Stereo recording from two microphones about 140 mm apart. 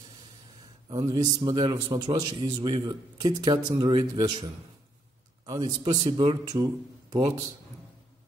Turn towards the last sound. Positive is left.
turn(degrees=-30)  # may be behind; listen again after turning